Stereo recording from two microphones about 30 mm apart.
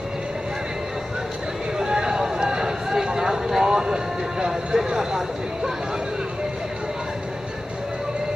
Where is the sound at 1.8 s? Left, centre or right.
Right.